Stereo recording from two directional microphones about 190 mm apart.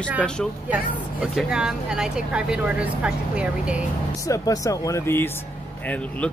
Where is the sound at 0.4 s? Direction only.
5° left (ahead or behind).